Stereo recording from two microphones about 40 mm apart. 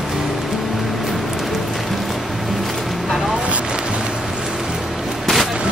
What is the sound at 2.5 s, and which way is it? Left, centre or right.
Vehicle, centre.